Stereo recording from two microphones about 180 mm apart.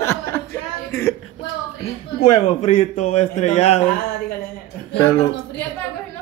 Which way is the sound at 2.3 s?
35° left (ahead or behind).